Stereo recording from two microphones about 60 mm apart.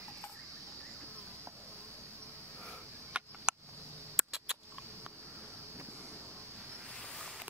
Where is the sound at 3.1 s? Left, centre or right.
Centre.